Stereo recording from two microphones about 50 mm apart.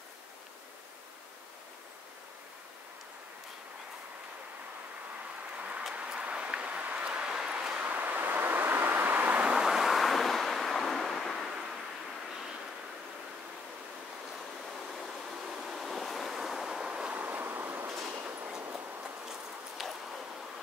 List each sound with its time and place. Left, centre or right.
5.6 s a sound: right
7.8 s vehicle: right
9.5 s waves: centre
14.8 s waves: centre
17.1 s vehicle: right
18.0 s train: right
19.8 s a sound: centre